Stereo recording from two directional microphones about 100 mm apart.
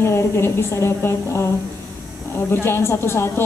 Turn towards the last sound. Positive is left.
turn(degrees=25)  # may be behind; listen again after turning